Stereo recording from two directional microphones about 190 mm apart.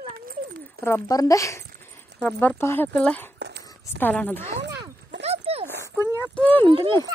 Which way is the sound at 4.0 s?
10° left (ahead or behind).